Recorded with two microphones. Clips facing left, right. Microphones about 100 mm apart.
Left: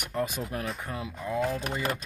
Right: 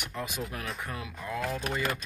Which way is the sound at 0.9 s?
25° left (ahead or behind).